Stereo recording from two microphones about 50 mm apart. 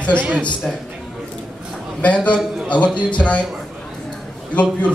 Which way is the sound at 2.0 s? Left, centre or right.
Left.